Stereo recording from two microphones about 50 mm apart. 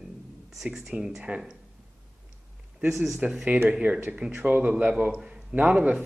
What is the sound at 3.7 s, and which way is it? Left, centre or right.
Speech, right.